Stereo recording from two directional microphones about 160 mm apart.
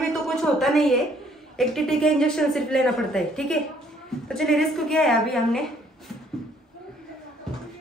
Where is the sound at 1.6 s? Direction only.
Centre (ahead or behind).